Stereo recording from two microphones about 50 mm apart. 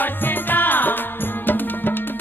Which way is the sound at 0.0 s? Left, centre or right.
Left.